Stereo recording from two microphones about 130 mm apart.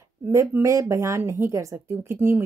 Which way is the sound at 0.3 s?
25° right (ahead or behind).